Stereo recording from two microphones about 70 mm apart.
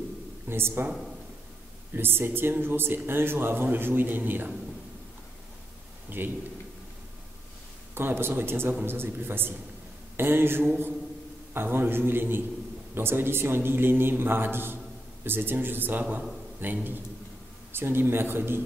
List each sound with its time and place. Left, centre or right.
0.5 s a man's voice: right
2.0 s a man's voice: right
6.0 s a man's voice: right
7.9 s a man's voice: right